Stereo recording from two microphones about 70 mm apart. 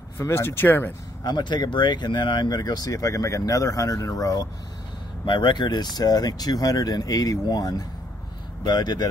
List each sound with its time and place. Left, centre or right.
0.3 s speech: left
1.2 s speech: left
5.4 s speech: left
8.6 s speech: left